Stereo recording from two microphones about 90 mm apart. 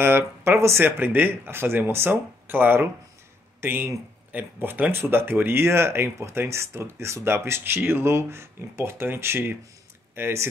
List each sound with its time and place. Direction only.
0.0 s speech: 25° right (ahead or behind)